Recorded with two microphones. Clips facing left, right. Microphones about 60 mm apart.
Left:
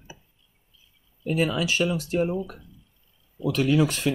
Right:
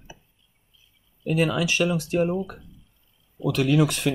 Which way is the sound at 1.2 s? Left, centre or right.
Right.